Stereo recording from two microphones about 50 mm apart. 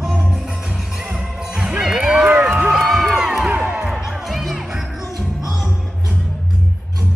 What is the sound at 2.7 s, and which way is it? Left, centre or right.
Crowd, centre.